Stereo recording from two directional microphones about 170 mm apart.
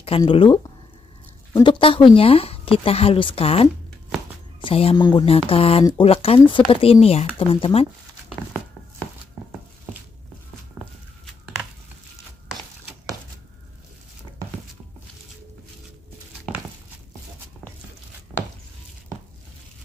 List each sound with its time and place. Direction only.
0.0 s speech: 30° left (ahead or behind)
4.9 s speech: 20° left (ahead or behind)
5.2 s speech: 35° left (ahead or behind)
10.8 s walk: centre (ahead or behind)